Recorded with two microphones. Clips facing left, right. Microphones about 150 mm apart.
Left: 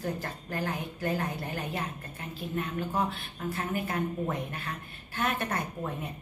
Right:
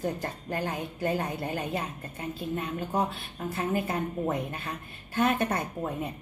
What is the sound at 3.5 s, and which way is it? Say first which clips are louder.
Speech: right 3 dB; 20° right (ahead or behind).